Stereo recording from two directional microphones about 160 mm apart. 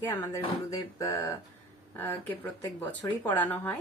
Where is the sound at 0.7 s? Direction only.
20° left (ahead or behind).